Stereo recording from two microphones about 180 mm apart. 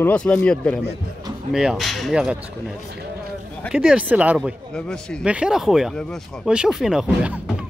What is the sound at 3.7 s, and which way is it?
Speech, 5° right (ahead or behind).